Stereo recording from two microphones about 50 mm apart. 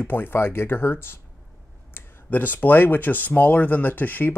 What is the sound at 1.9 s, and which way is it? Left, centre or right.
Speech, left.